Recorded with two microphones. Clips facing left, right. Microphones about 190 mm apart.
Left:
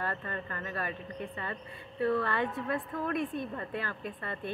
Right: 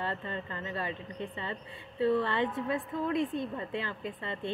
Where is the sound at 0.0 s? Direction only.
20° right (ahead or behind).